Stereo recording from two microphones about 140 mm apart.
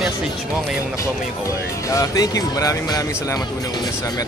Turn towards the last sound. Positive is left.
turn(degrees=25)  # may be behind; listen again after turning